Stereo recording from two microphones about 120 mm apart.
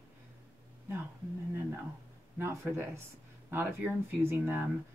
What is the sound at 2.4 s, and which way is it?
Speech, 20° right (ahead or behind).